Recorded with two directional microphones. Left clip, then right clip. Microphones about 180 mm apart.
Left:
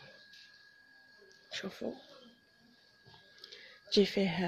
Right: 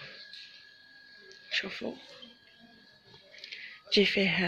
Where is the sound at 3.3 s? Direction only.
35° left (ahead or behind).